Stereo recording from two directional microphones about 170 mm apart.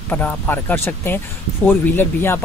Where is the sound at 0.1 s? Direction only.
10° left (ahead or behind).